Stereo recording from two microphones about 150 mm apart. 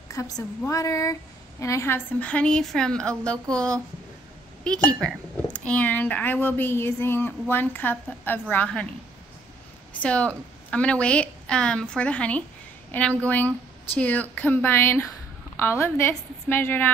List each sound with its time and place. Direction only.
0.1 s a woman's voice: 20° left (ahead or behind)
10.0 s speech: 10° left (ahead or behind)